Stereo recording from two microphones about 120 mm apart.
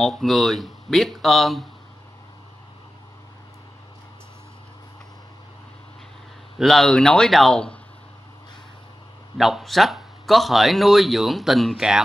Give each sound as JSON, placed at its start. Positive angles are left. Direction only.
{"t": 0.0, "sound": "speech", "side_deg": 5}
{"t": 6.6, "sound": "speech", "side_deg": 5}
{"t": 9.4, "sound": "speech", "side_deg": 0}